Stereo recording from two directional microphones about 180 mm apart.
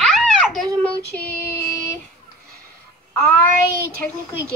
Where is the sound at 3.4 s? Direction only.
55° right (ahead or behind).